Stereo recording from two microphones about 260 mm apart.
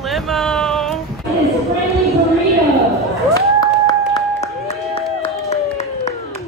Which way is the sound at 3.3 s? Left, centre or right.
Centre.